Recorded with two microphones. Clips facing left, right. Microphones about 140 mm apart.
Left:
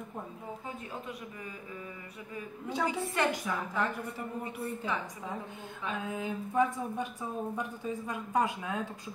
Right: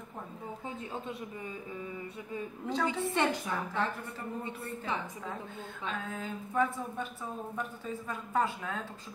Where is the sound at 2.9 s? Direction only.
25° right (ahead or behind).